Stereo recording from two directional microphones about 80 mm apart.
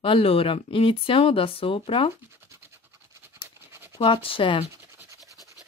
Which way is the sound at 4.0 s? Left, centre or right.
Left.